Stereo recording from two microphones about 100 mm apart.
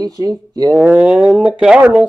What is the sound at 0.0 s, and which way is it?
Speech, 40° right (ahead or behind).